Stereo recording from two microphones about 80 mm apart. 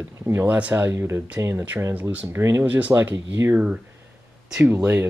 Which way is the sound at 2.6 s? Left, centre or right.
Right.